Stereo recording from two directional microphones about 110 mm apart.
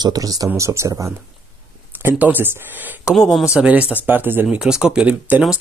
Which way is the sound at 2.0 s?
15° right (ahead or behind).